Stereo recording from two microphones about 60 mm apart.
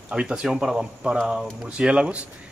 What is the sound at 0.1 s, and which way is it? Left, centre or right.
Speech, centre.